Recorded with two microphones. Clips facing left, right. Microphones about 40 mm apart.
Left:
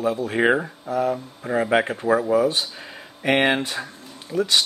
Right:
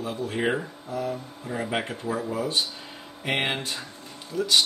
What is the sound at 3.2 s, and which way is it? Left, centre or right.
Speech, left.